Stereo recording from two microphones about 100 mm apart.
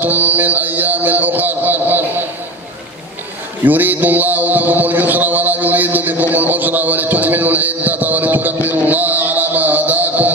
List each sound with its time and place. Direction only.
0.0 s mantra: 15° right (ahead or behind)
3.6 s mantra: 20° right (ahead or behind)